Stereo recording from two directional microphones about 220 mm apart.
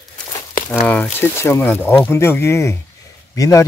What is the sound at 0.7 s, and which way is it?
Speech, 10° left (ahead or behind).